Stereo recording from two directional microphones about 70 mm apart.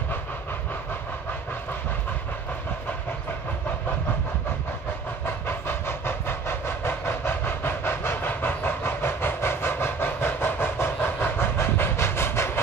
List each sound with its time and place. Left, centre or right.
5.2 s train: left